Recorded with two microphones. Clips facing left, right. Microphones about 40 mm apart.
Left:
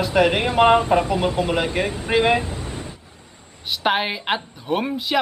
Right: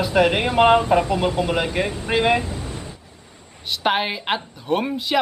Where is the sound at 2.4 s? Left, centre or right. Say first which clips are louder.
Even; left.